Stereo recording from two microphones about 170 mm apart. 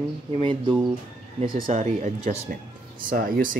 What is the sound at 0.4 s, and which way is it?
Speech, 30° right (ahead or behind).